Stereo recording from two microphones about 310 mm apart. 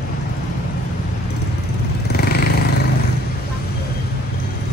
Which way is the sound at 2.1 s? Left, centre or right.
Left.